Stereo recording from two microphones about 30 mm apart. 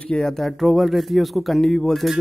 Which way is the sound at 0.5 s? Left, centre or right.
Centre.